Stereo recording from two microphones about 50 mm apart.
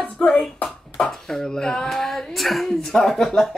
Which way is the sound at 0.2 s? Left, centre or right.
Centre.